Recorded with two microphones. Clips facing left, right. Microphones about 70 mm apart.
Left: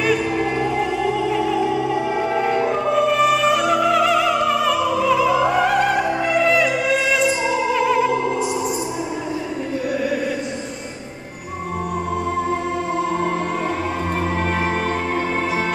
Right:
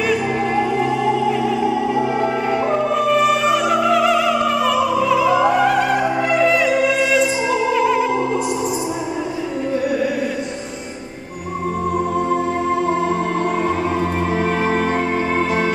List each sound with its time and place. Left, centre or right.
2.3 s music: centre